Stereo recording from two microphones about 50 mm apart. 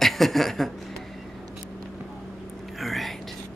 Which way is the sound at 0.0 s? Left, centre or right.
Centre.